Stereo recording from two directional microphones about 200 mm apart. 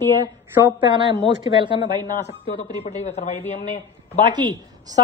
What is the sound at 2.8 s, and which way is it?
A woman's voice, 35° left (ahead or behind).